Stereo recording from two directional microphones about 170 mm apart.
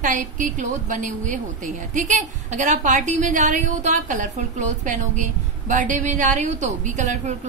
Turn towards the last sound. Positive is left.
turn(degrees=-45)  # may be behind; listen again after turning